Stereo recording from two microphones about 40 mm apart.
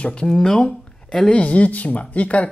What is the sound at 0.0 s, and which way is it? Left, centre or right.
Speech, left.